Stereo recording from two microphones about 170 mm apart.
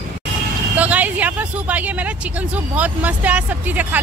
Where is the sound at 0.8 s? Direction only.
10° right (ahead or behind).